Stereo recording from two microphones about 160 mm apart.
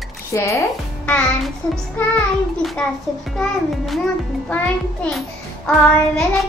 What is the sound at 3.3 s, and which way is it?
Speech, centre (ahead or behind).